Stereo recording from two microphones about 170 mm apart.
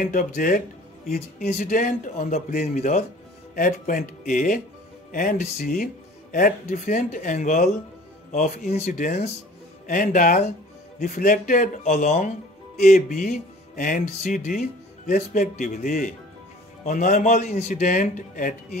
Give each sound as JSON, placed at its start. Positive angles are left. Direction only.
{"t": 0.0, "sound": "speech", "side_deg": 50}